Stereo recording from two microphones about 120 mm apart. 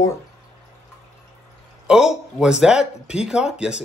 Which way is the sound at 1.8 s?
5° right (ahead or behind).